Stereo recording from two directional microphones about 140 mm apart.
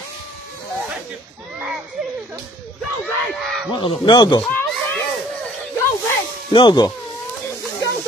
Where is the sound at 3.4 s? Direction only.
Centre (ahead or behind).